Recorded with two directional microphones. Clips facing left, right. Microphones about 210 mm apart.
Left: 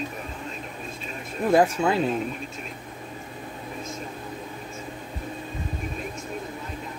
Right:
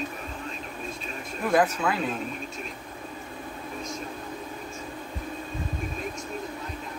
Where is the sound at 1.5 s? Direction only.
25° left (ahead or behind).